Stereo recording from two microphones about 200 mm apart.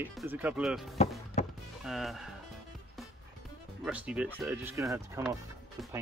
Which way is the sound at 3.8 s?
5° right (ahead or behind).